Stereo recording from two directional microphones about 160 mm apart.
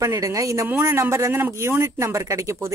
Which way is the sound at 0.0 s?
20° right (ahead or behind).